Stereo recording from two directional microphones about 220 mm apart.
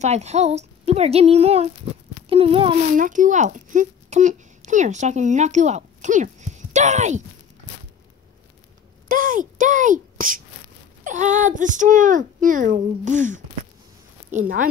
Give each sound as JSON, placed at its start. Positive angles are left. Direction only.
{"t": 0.0, "sound": "a woman's voice", "side_deg": -30}
{"t": 3.0, "sound": "speech", "side_deg": -35}
{"t": 9.1, "sound": "speech", "side_deg": -35}